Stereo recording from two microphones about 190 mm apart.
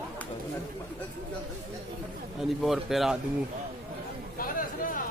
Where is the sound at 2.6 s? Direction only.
Centre (ahead or behind).